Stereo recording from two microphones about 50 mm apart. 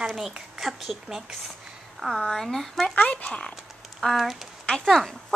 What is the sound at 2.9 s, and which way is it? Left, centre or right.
Speech, left.